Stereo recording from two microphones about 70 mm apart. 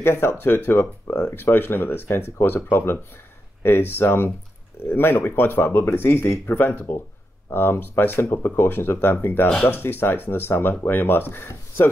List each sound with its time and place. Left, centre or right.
0.0 s speech: left
6.5 s speech: left